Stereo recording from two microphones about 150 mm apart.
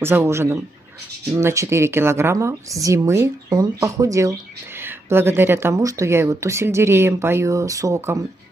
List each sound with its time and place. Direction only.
0.0 s speech: 15° right (ahead or behind)